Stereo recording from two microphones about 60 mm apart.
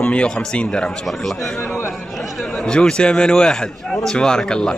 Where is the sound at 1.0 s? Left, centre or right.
Centre.